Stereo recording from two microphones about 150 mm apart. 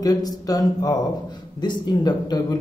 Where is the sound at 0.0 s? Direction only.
25° left (ahead or behind).